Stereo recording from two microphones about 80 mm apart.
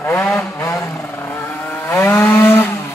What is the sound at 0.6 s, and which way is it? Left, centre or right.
Vehicle, left.